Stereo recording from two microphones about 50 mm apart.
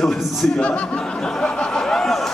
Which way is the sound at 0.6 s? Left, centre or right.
Left.